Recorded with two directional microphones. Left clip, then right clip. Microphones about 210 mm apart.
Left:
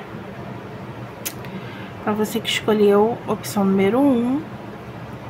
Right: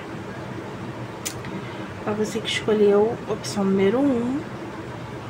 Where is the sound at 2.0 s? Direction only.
20° left (ahead or behind).